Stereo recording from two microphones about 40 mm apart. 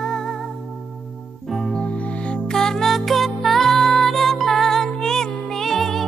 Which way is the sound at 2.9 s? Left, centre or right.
Centre.